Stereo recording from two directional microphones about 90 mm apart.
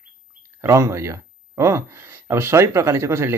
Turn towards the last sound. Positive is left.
turn(degrees=-30)  # may be behind; listen again after turning